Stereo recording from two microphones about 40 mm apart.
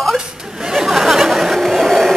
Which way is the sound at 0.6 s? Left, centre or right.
Centre.